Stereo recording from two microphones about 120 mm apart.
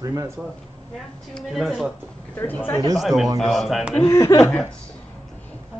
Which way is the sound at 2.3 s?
15° left (ahead or behind).